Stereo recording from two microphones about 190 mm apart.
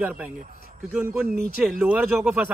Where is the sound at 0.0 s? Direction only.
10° right (ahead or behind).